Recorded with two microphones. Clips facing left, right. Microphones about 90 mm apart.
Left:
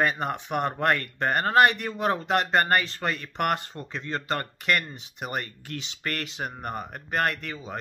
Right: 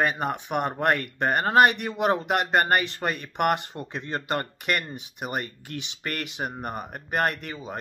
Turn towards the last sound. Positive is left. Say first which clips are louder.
# even
turn(degrees=-10)  # may be behind; listen again after turning